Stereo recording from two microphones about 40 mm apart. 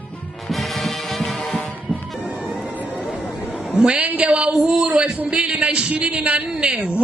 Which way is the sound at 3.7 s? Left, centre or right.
Right.